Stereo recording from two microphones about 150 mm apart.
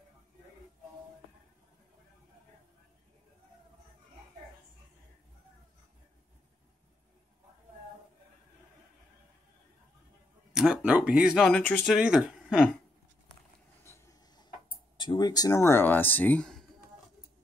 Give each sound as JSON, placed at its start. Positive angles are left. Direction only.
{"t": 10.5, "sound": "speech", "side_deg": -5}
{"t": 11.9, "sound": "speech", "side_deg": -5}
{"t": 13.8, "sound": "a sound", "side_deg": 20}
{"t": 15.0, "sound": "speech", "side_deg": 30}